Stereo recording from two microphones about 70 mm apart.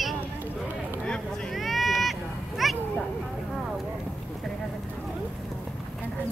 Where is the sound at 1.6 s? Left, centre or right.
Centre.